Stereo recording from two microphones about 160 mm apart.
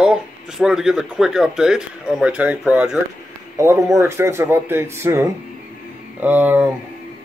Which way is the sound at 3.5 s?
20° right (ahead or behind).